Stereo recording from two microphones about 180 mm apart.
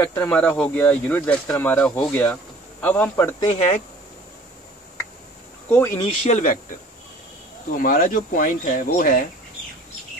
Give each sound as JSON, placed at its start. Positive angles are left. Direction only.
{"t": 0.0, "sound": "speech", "side_deg": 10}
{"t": 3.5, "sound": "speech", "side_deg": 40}
{"t": 5.7, "sound": "speech", "side_deg": 10}
{"t": 6.2, "sound": "speech", "side_deg": 45}
{"t": 7.7, "sound": "speech", "side_deg": 50}